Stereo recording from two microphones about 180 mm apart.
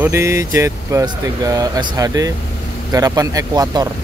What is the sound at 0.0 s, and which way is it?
Speech, 15° right (ahead or behind).